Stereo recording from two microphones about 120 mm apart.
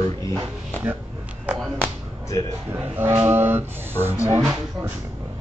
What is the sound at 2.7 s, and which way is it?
Speech, 20° right (ahead or behind).